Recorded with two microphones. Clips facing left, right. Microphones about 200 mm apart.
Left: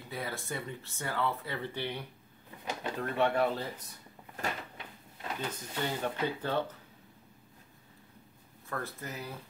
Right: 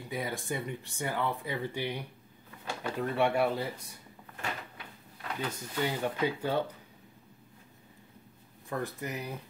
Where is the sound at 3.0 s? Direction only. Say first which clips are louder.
Right 1 dB; 10° right (ahead or behind).